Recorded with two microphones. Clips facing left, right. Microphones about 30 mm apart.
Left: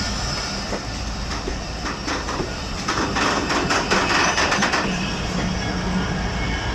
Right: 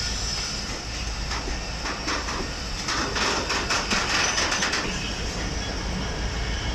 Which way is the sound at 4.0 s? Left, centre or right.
Left.